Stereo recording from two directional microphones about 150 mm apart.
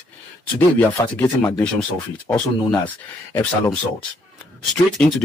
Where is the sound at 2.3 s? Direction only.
25° left (ahead or behind).